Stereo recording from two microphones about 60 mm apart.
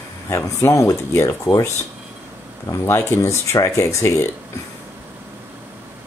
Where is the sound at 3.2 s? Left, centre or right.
Left.